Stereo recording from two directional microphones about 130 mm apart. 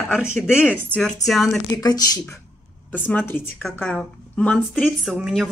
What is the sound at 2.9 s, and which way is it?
Speech, 15° left (ahead or behind).